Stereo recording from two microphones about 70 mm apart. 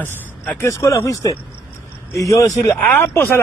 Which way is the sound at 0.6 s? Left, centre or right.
Left.